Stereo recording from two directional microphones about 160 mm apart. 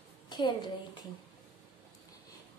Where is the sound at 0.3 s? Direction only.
30° left (ahead or behind).